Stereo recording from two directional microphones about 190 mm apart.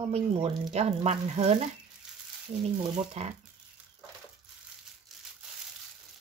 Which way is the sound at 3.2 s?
35° right (ahead or behind).